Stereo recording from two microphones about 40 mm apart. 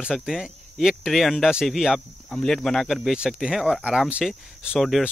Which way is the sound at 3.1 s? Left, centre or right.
Right.